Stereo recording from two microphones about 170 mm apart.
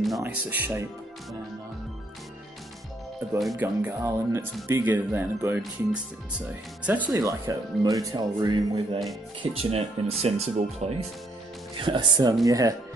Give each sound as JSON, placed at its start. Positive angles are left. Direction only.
{"t": 0.2, "sound": "speech", "side_deg": -10}
{"t": 3.5, "sound": "speech", "side_deg": -15}
{"t": 6.8, "sound": "speech", "side_deg": -10}
{"t": 7.1, "sound": "speech", "side_deg": -20}